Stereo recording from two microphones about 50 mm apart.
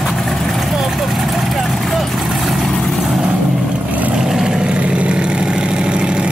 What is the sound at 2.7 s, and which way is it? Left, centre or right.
Vehicle, centre.